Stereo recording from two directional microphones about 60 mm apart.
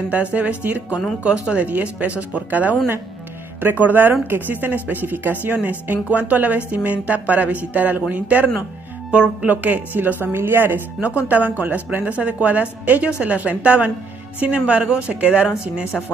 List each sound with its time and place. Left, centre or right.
0.1 s a woman's voice: right
10.2 s a woman's voice: right
11.0 s a woman's voice: right